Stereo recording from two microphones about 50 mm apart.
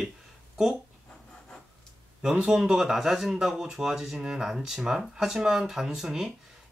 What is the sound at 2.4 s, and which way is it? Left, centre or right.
Speech, centre.